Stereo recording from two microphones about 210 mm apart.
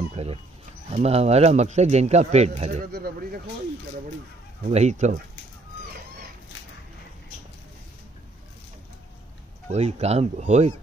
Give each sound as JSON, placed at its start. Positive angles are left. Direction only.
{"t": 0.1, "sound": "a sound", "side_deg": -30}
{"t": 0.8, "sound": "a man's voice", "side_deg": -30}
{"t": 2.8, "sound": "speech", "side_deg": -45}
{"t": 4.6, "sound": "a man's voice", "side_deg": -35}
{"t": 9.7, "sound": "a man's voice", "side_deg": -30}